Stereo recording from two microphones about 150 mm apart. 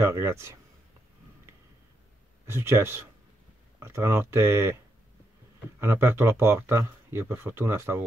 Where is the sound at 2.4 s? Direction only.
15° right (ahead or behind).